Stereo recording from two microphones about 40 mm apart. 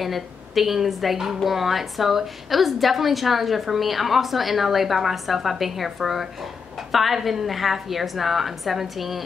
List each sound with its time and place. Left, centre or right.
0.0 s a woman's voice: centre